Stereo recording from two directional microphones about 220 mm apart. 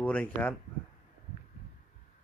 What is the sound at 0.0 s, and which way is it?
Speech, 5° left (ahead or behind).